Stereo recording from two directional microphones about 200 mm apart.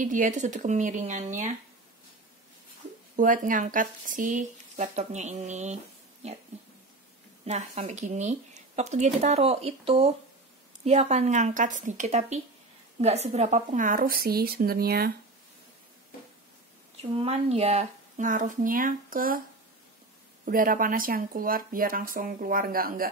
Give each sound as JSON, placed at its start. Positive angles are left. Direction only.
{"t": 0.0, "sound": "speech", "side_deg": -40}
{"t": 3.2, "sound": "speech", "side_deg": -40}
{"t": 7.4, "sound": "speech", "side_deg": -35}
{"t": 17.2, "sound": "speech", "side_deg": -30}
{"t": 20.4, "sound": "speech", "side_deg": -45}